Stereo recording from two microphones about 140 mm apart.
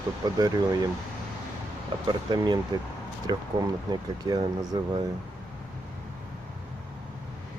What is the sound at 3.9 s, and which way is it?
Speech, 30° right (ahead or behind).